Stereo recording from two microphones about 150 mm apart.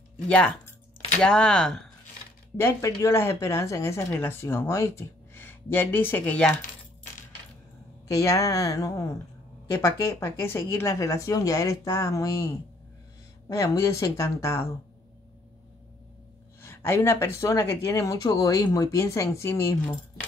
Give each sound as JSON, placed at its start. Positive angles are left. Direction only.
{"t": 0.3, "sound": "speech", "side_deg": 10}
{"t": 2.5, "sound": "speech", "side_deg": 20}
{"t": 8.1, "sound": "speech", "side_deg": 20}
{"t": 16.6, "sound": "speech", "side_deg": 15}